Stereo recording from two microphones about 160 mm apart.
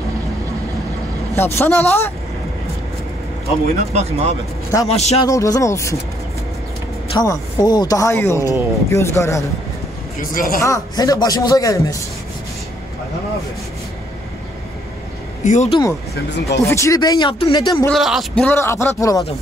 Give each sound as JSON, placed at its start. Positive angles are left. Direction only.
{"t": 1.3, "sound": "speech", "side_deg": 15}
{"t": 3.9, "sound": "speech", "side_deg": -40}
{"t": 4.8, "sound": "a man's voice", "side_deg": 40}
{"t": 5.2, "sound": "a man's voice", "side_deg": 20}
{"t": 7.2, "sound": "a man's voice", "side_deg": 25}
{"t": 10.2, "sound": "speech", "side_deg": 65}
{"t": 10.6, "sound": "a man's voice", "side_deg": 20}
{"t": 15.4, "sound": "speech", "side_deg": 50}
{"t": 16.4, "sound": "a man's voice", "side_deg": 20}
{"t": 17.8, "sound": "a man's voice", "side_deg": 0}
{"t": 18.6, "sound": "a man's voice", "side_deg": 15}